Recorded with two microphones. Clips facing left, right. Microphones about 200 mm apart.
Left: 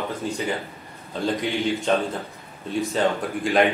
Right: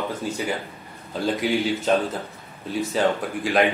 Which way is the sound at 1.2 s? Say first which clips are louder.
Right 1 dB; 5° right (ahead or behind).